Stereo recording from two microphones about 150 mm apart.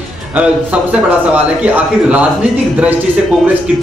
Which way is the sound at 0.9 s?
10° right (ahead or behind).